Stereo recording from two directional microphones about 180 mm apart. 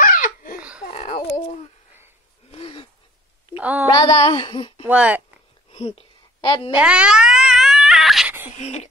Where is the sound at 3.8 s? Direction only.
25° left (ahead or behind).